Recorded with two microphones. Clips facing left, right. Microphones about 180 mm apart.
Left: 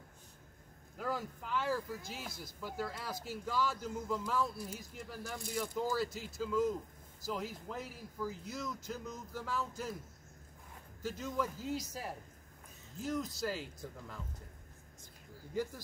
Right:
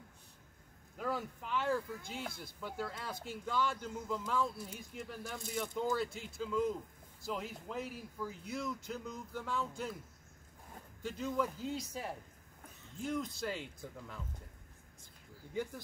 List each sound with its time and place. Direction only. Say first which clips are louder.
0.9 s speech: even; centre (ahead or behind)
2.2 s speech: right 2 dB; 55° right (ahead or behind)
2.6 s speech: left 1 dB; 5° left (ahead or behind)
11.0 s speech: right 1 dB; centre (ahead or behind)